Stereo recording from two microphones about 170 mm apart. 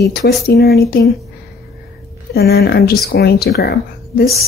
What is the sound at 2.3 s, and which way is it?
Speech, 65° left (ahead or behind).